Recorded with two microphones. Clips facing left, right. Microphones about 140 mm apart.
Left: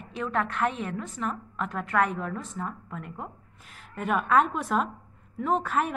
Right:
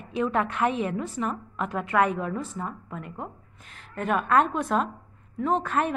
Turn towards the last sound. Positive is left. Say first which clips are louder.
# right 1 dB
turn(degrees=5)  # may be behind; listen again after turning